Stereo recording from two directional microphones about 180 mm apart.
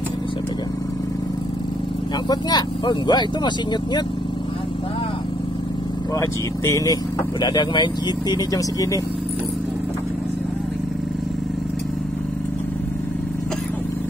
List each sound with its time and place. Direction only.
2.2 s speech: 25° left (ahead or behind)
6.1 s speech: 15° left (ahead or behind)